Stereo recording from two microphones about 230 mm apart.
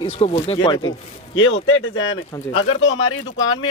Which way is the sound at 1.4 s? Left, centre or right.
Left.